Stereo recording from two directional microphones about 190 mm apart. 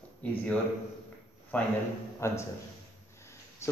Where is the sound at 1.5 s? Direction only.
5° left (ahead or behind).